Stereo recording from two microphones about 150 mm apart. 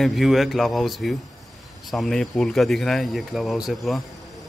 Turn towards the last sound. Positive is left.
turn(degrees=0)  # may be behind; listen again after turning